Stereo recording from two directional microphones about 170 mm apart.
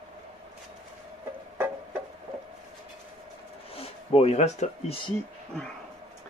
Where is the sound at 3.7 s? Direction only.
35° left (ahead or behind).